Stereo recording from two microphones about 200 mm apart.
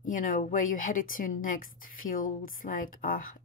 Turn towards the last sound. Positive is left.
turn(degrees=45)  # may be behind; listen again after turning